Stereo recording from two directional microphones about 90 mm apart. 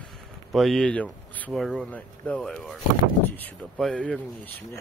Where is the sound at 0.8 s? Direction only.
15° left (ahead or behind).